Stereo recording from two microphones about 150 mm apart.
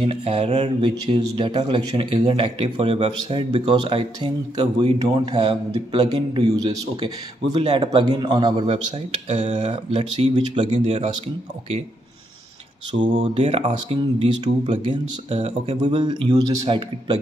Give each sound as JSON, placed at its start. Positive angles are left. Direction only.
{"t": 0.0, "sound": "speech", "side_deg": -35}
{"t": 9.3, "sound": "speech", "side_deg": -50}
{"t": 12.9, "sound": "speech", "side_deg": -35}
{"t": 15.8, "sound": "a man's voice", "side_deg": -30}